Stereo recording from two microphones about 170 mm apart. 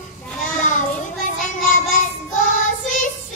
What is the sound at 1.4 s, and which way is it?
Child singing, 50° left (ahead or behind).